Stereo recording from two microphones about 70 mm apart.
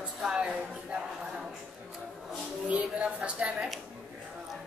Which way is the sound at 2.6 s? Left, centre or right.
Centre.